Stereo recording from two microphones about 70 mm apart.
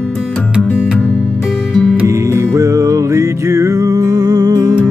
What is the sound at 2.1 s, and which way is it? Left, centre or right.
Music, right.